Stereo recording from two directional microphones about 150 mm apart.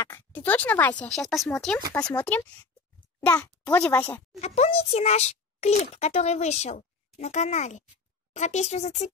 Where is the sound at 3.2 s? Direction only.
20° left (ahead or behind).